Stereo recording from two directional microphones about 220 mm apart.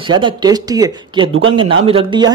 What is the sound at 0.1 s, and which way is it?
Speech, 20° right (ahead or behind).